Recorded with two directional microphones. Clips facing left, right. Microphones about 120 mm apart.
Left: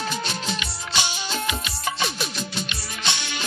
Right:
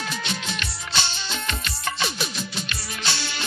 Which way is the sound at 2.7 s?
20° left (ahead or behind).